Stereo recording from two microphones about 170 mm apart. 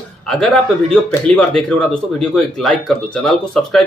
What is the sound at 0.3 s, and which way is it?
Speech, 5° left (ahead or behind).